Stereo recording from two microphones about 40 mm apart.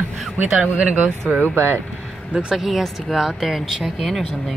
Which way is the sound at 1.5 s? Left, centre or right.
Right.